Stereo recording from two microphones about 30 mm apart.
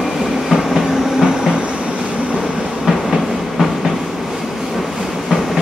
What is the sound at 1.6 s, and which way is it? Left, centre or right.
Train, right.